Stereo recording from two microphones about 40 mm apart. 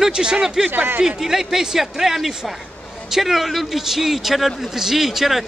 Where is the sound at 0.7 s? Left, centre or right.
Right.